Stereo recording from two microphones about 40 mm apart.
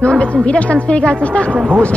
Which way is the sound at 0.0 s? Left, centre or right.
Left.